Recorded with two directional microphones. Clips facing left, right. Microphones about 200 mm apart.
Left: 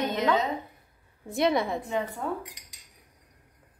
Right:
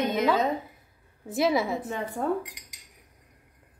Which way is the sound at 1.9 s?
50° right (ahead or behind).